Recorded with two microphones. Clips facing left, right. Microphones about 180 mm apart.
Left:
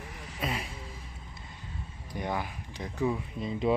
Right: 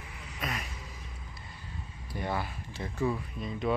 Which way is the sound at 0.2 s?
30° left (ahead or behind).